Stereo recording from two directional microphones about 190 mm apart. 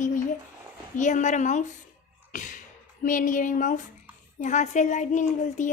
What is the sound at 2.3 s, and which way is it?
Speech, 45° left (ahead or behind).